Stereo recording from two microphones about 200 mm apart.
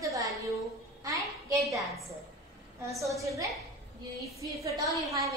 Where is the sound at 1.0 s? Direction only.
15° right (ahead or behind).